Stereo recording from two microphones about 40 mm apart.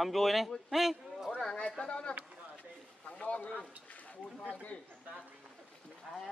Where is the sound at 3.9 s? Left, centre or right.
Left.